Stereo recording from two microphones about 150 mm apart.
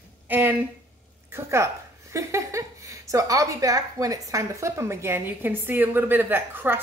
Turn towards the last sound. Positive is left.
turn(degrees=-15)  # may be behind; listen again after turning